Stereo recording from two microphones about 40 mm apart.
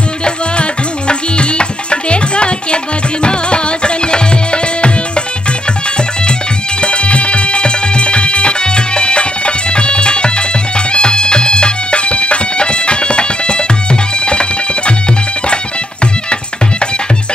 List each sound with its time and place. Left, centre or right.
0.2 s music: left
6.8 s music: left